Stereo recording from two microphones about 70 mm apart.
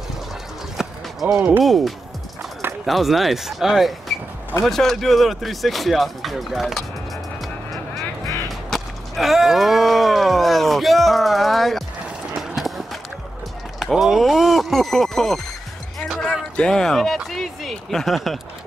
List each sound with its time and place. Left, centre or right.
0.8 s a sound: centre
1.2 s speech: right
1.6 s speech: centre
8.5 s a sound: centre
12.4 s clip-clop: centre
13.7 s speech: centre
16.5 s speech: centre